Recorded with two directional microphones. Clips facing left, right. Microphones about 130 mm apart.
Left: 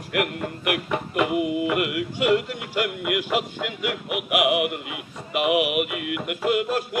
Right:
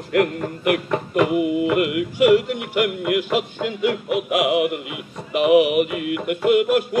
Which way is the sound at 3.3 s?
30° right (ahead or behind).